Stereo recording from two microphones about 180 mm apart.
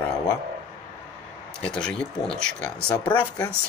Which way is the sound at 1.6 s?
5° left (ahead or behind).